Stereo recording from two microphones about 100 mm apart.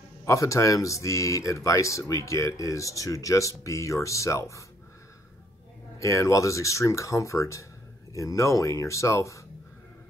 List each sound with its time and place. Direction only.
0.2 s speech: 30° left (ahead or behind)
5.9 s speech: 30° left (ahead or behind)